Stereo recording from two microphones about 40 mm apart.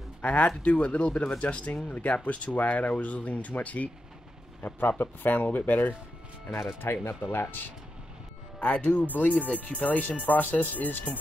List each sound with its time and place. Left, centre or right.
0.2 s speech: left
6.8 s speech: left
7.2 s speech: left
8.5 s speech: left